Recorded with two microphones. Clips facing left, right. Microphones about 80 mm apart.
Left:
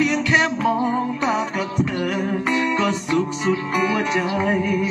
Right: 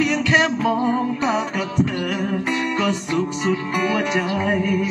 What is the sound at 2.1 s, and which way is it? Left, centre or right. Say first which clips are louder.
Music: left 2 dB; left.